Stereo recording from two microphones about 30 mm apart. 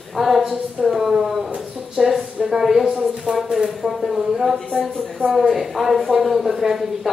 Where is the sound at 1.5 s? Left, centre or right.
Centre.